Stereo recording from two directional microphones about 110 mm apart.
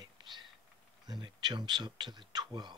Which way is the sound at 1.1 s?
40° right (ahead or behind).